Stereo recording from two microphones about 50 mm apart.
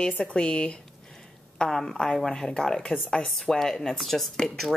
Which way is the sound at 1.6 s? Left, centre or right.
Centre.